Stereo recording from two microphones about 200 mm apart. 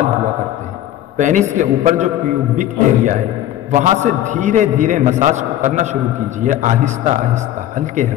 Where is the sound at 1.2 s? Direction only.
40° right (ahead or behind).